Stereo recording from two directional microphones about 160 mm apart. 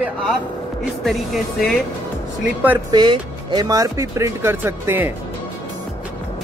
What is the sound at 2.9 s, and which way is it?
Speech, 25° right (ahead or behind).